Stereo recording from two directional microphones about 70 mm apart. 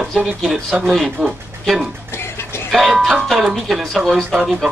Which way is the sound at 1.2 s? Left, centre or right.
Centre.